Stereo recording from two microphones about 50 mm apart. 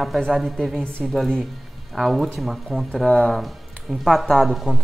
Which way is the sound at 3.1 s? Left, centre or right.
Centre.